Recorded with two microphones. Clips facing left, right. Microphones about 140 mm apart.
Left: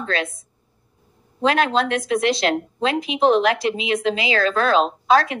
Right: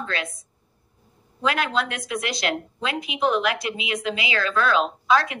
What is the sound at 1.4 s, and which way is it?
A woman's voice, 30° left (ahead or behind).